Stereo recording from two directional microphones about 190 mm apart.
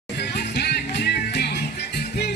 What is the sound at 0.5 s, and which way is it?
Music, 60° left (ahead or behind).